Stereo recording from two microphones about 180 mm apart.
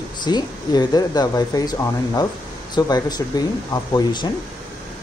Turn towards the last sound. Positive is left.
turn(degrees=25)  # may be behind; listen again after turning